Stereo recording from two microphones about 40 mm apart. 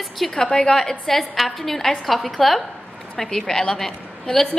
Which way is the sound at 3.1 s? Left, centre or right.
Centre.